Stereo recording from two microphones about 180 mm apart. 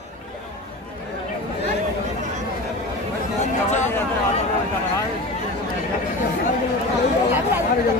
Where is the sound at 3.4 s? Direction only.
40° left (ahead or behind).